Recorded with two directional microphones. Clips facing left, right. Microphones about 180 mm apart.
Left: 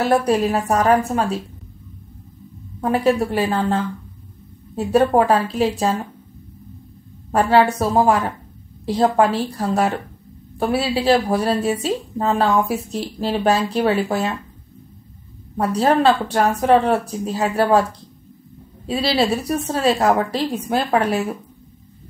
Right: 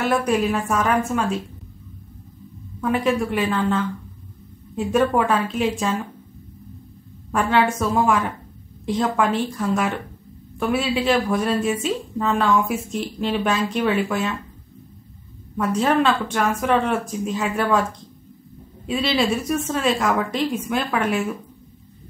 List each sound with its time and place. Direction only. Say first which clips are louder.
0.0 s a woman's voice: left 3 dB; 35° left (ahead or behind)
2.8 s a woman's voice: left 3 dB; 35° left (ahead or behind)
7.2 s a woman's voice: left 4 dB; 35° left (ahead or behind)
15.5 s a woman's voice: left 2 dB; 35° left (ahead or behind)
18.9 s a woman's voice: left 2 dB; 35° left (ahead or behind)